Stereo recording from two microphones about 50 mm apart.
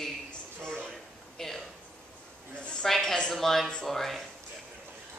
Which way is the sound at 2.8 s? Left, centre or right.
Centre.